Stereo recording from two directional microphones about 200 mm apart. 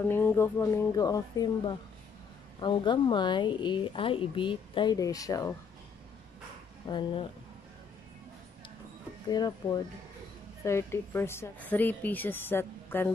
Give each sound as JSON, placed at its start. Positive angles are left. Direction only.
{"t": 0.1, "sound": "a woman's voice", "side_deg": 10}
{"t": 2.6, "sound": "speech", "side_deg": 25}
{"t": 6.9, "sound": "speech", "side_deg": 25}
{"t": 9.3, "sound": "a woman's voice", "side_deg": 20}